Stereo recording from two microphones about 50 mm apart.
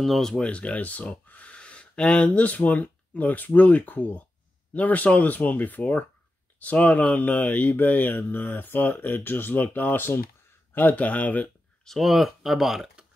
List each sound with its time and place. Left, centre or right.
0.0 s speech: centre
0.4 s speech: left
11.8 s speech: centre